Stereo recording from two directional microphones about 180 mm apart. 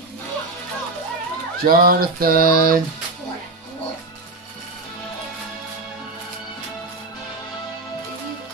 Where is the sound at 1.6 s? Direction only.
55° right (ahead or behind).